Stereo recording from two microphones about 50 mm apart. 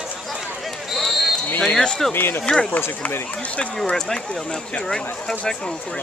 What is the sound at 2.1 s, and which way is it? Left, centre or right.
Speech, left.